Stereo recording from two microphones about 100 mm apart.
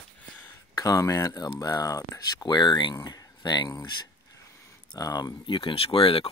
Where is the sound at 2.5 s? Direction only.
50° left (ahead or behind).